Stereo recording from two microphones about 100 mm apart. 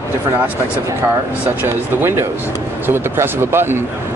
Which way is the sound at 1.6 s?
20° right (ahead or behind).